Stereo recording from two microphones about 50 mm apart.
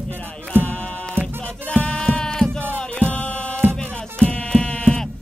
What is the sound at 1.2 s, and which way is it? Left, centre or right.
Music, right.